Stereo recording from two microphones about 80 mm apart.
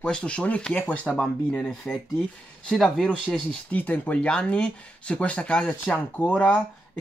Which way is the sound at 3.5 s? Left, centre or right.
Centre.